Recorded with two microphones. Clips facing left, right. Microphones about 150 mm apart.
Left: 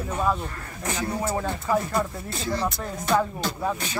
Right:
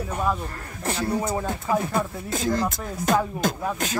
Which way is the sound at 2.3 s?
45° right (ahead or behind).